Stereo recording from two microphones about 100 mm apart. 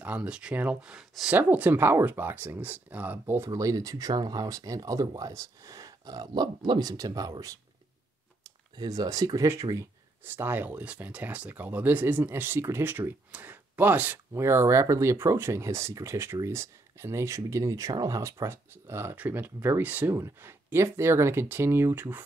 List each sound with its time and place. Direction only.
0.0 s speech: 15° right (ahead or behind); by 7.5 s 40° right (ahead or behind)
8.7 s speech: 40° right (ahead or behind); by 22.2 s 20° right (ahead or behind)